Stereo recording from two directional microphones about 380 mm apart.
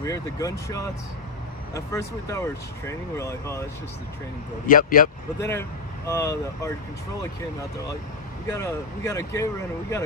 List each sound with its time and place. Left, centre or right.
0.0 s speech: centre
4.6 s speech: left
5.4 s speech: centre
8.5 s speech: centre